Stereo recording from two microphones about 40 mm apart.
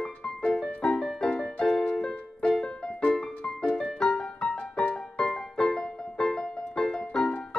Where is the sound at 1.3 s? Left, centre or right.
Left.